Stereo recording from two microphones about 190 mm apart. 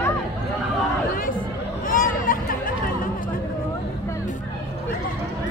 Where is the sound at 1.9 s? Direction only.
45° left (ahead or behind).